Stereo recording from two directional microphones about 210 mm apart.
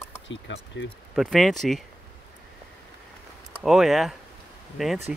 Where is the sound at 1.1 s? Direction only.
Centre (ahead or behind).